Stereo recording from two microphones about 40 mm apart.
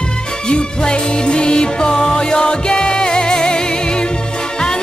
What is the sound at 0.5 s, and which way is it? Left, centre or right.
Music, left.